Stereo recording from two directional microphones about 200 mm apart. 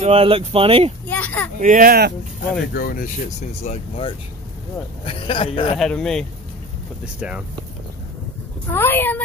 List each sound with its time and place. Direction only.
0.0 s speech: 30° right (ahead or behind)
1.0 s children playing: 10° left (ahead or behind)
1.6 s speech: 45° right (ahead or behind)
2.7 s speech: 50° left (ahead or behind); by 5.8 s 25° left (ahead or behind)
5.8 s speech: 5° left (ahead or behind)
8.6 s speech: 10° left (ahead or behind)